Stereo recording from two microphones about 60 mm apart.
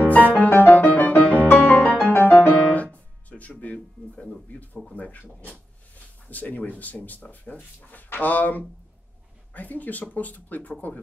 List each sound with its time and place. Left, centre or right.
0.0 s music: left
2.0 s music: left
2.3 s piano: left
4.9 s speech: left
6.2 s speech: left